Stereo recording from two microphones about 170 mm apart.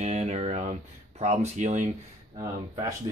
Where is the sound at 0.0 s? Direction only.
40° right (ahead or behind).